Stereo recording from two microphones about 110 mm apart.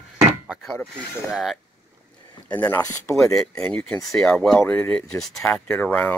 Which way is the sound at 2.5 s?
15° left (ahead or behind).